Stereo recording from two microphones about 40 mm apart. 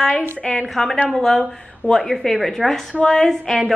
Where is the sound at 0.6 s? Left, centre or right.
Centre.